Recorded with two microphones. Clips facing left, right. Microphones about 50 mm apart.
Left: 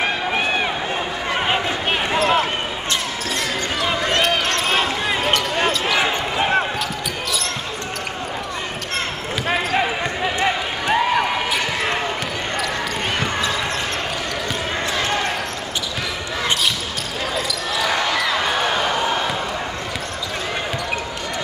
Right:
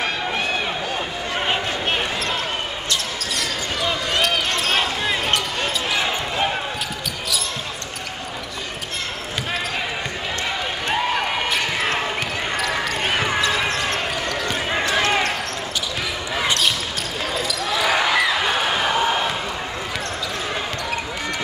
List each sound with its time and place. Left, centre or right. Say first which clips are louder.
0.0 s run: left 3 dB; centre
1.3 s basketball bounce: left 2 dB; centre
2.9 s basketball bounce: left 2 dB; left
4.6 s basketball bounce: left 1 dB; centre
10.9 s basketball bounce: left 4 dB; centre
17.3 s basketball bounce: right 1 dB; centre